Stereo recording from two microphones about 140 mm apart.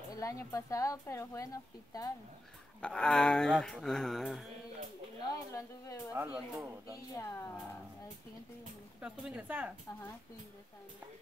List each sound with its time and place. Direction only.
0.1 s speech: 25° left (ahead or behind)
2.8 s speech: 5° left (ahead or behind)
5.3 s speech: 25° left (ahead or behind)
6.1 s speech: 15° right (ahead or behind)
7.2 s speech: 20° left (ahead or behind)
9.0 s speech: 5° right (ahead or behind)